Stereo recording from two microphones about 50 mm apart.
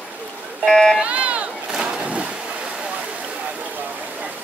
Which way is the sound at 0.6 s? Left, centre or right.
Centre.